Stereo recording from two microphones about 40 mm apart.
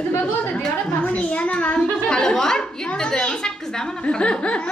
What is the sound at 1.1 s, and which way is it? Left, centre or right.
Speech, left.